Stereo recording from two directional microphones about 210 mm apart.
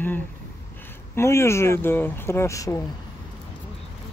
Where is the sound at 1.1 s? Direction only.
10° left (ahead or behind).